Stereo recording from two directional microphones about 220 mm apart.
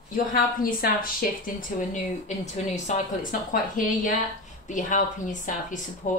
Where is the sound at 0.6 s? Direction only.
40° left (ahead or behind).